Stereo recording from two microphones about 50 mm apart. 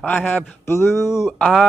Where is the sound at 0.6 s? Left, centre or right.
Left.